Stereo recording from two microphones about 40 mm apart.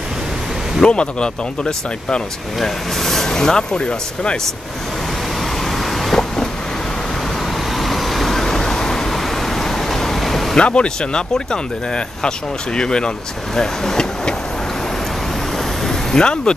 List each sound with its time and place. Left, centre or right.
0.8 s speech: left
2.6 s speech: centre; by 4.4 s left
6.1 s vehicle: centre
7.7 s vehicle: centre
10.5 s speech: left
15.8 s vehicle: centre